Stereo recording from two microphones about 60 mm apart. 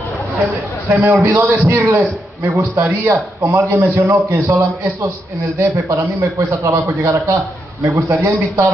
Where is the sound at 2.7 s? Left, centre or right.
Right.